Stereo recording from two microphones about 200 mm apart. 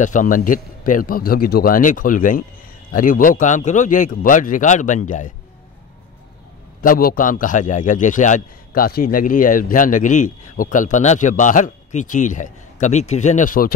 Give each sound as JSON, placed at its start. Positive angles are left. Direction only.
{"t": 0.0, "sound": "a man's voice", "side_deg": 40}
{"t": 6.8, "sound": "a man's voice", "side_deg": 45}